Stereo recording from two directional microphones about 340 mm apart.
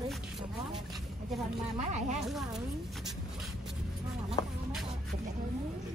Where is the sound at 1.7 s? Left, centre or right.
Centre.